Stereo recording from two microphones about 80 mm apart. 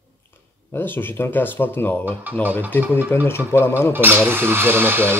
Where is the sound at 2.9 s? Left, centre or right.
Left.